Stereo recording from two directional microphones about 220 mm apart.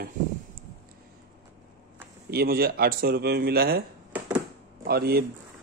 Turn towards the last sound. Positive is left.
turn(degrees=-45)  # may be behind; listen again after turning